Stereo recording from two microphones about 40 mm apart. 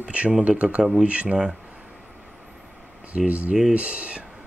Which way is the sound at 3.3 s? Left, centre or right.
Right.